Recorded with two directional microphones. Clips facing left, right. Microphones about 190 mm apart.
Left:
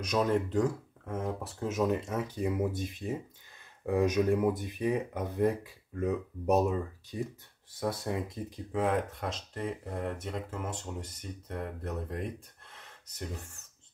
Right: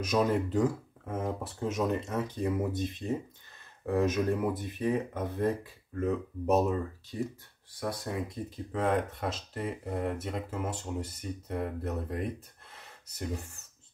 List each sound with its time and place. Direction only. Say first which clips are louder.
0.0 s speech: right 1 dB; 5° right (ahead or behind); by 7.2 s 10° left (ahead or behind)
7.8 s speech: left 2 dB; 25° left (ahead or behind)
8.7 s speech: right 1 dB; 5° left (ahead or behind)